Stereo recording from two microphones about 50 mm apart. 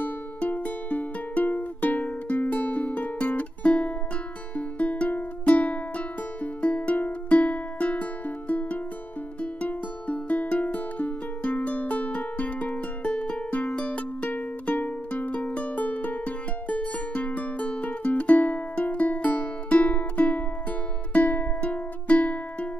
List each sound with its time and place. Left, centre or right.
0.4 s music: left